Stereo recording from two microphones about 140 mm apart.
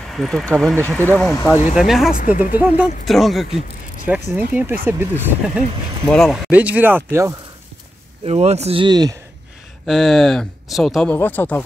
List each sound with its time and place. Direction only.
0.1 s speech: centre (ahead or behind)
0.7 s speech: 15° left (ahead or behind)
1.8 s speech: centre (ahead or behind)
2.5 s speech: 15° right (ahead or behind)
3.1 s speech: centre (ahead or behind)
6.0 s speech: 5° left (ahead or behind)
6.5 s speech: 10° right (ahead or behind)
8.3 s speech: 50° right (ahead or behind)
8.8 s speech: 30° right (ahead or behind)
9.8 s speech: centre (ahead or behind)
11.1 s speech: 15° left (ahead or behind)